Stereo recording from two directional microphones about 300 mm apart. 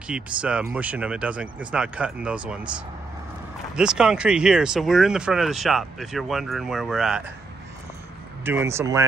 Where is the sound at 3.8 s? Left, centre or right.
Centre.